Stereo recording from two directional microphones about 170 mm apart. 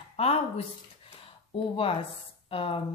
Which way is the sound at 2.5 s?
30° left (ahead or behind).